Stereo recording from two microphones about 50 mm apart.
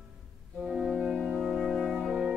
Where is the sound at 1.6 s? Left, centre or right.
Centre.